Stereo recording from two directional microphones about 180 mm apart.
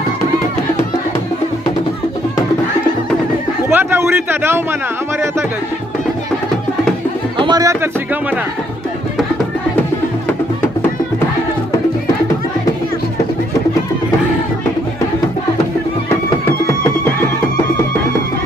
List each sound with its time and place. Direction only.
3.7 s a sound: 15° right (ahead or behind)
7.3 s speech: 25° right (ahead or behind)
16.4 s music: 15° left (ahead or behind)